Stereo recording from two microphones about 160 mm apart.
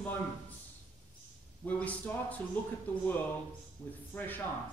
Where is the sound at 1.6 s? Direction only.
10° left (ahead or behind).